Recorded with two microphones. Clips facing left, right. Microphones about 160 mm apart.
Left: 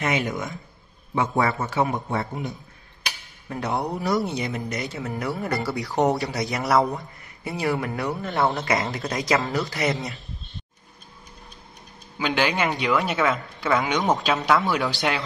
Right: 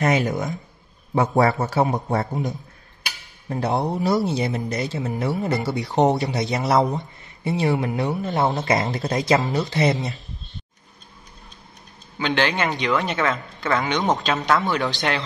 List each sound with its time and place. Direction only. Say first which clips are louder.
0.0 s a man's voice: right 4 dB; 40° right (ahead or behind)
4.9 s speech: right 4 dB; 20° right (ahead or behind)
12.2 s a man's voice: right 1 dB; 10° left (ahead or behind)